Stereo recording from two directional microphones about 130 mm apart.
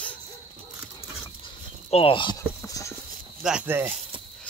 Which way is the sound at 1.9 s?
45° left (ahead or behind).